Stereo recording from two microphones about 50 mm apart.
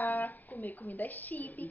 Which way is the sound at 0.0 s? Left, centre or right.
Left.